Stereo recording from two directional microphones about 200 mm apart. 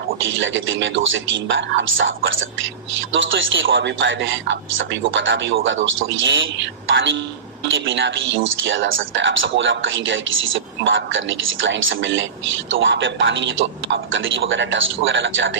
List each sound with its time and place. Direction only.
0.4 s a man's voice: 70° right (ahead or behind)